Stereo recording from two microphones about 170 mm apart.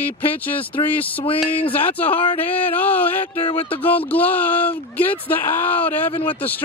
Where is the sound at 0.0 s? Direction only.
10° left (ahead or behind).